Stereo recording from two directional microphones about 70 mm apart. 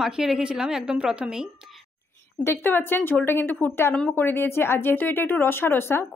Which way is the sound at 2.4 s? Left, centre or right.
Left.